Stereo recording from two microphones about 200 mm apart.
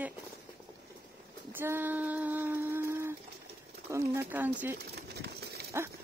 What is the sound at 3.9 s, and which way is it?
Speech, 15° right (ahead or behind).